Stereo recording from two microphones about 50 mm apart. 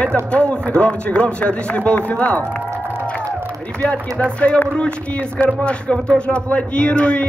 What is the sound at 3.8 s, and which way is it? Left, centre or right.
Speech, left.